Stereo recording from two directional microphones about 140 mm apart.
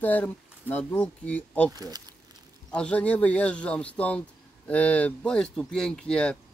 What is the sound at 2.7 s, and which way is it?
Speech, 10° left (ahead or behind).